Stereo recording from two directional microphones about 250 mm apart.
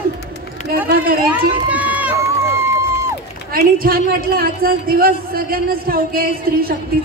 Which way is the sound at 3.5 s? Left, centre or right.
Right.